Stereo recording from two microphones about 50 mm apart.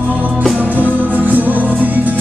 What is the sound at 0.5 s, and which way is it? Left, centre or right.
Music, right.